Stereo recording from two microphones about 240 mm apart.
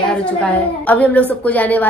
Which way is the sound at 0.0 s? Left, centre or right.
Centre.